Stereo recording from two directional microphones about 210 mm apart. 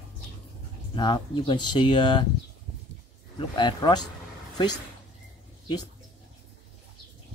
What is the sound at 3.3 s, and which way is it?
Speech, 20° left (ahead or behind).